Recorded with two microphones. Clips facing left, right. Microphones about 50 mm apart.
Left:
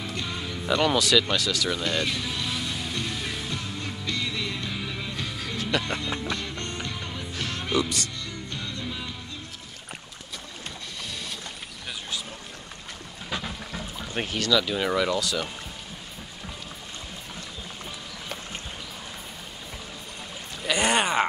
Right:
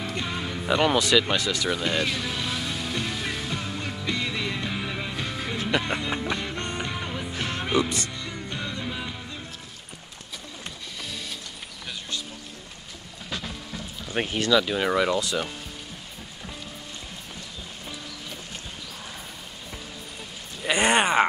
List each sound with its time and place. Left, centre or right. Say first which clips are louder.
0.1 s music: right 2 dB; centre
13.3 s boat: left 1 dB; centre
14.0 s speech: right 3 dB; centre
20.6 s a sound: right 2 dB; centre